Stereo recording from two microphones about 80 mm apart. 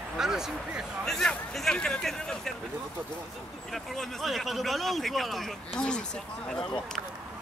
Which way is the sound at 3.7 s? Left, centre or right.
Centre.